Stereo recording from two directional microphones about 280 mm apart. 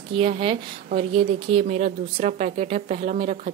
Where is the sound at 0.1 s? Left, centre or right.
Centre.